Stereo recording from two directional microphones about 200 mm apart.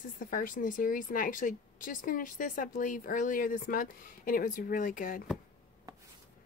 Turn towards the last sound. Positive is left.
turn(degrees=45)  # may be behind; listen again after turning